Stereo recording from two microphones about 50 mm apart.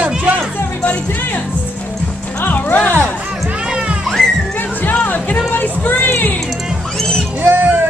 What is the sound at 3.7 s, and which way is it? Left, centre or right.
Music, right.